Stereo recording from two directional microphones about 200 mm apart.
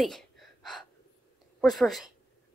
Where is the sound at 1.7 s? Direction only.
Centre (ahead or behind).